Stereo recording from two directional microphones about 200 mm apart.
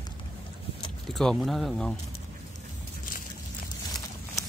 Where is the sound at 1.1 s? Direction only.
Centre (ahead or behind).